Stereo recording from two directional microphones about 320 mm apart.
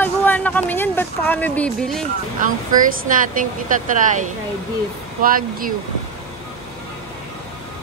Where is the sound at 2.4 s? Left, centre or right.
Right.